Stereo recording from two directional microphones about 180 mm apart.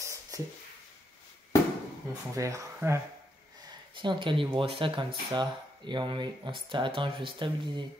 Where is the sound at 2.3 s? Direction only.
15° right (ahead or behind).